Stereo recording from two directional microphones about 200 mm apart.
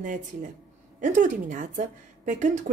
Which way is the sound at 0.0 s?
40° right (ahead or behind).